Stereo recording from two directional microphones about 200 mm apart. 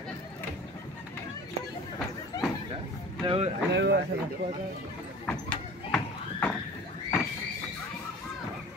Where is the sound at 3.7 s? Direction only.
60° right (ahead or behind).